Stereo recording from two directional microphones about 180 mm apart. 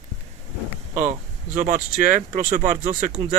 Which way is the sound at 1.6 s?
45° right (ahead or behind).